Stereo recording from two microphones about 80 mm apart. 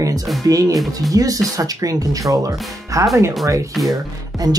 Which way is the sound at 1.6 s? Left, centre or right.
Right.